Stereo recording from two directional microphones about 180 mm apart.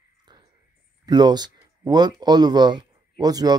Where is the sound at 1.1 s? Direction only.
25° right (ahead or behind).